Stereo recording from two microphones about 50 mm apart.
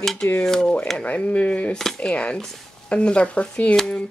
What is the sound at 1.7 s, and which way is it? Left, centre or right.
Speech, centre.